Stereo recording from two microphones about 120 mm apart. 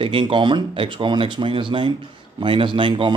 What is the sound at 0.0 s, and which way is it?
Speech, 45° right (ahead or behind).